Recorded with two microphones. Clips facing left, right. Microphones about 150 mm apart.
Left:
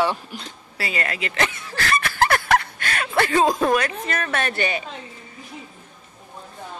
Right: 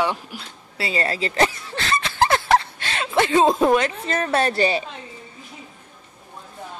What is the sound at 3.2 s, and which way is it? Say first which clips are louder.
A woman's voice: right 2 dB; 20° right (ahead or behind).